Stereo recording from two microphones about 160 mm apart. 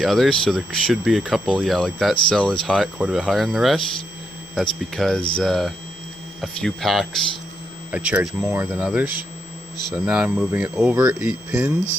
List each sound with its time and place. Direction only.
0.0 s speech: centre (ahead or behind)